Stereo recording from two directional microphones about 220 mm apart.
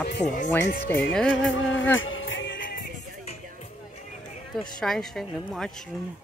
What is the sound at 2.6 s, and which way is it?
Music, 40° left (ahead or behind).